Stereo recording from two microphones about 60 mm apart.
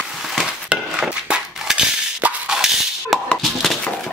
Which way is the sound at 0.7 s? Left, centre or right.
Right.